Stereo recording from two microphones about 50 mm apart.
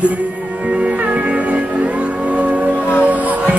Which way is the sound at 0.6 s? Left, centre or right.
Right.